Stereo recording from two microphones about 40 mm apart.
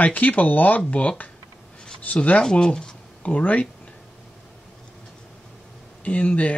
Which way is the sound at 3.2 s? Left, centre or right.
Left.